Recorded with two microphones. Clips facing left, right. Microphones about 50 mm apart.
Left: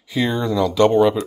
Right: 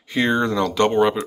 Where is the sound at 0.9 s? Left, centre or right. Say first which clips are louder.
Left 3 dB; centre.